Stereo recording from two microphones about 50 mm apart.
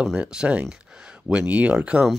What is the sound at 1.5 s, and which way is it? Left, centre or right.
Speech, right.